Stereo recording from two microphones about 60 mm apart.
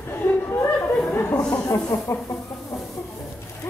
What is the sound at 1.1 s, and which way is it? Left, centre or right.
Chatter, left.